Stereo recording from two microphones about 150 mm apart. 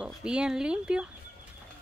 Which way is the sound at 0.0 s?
5° right (ahead or behind).